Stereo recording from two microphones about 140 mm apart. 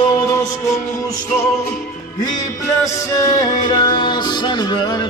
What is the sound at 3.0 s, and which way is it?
Music, 25° left (ahead or behind).